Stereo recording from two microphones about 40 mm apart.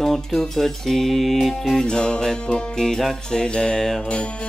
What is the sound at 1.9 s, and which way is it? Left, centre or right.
Music, left.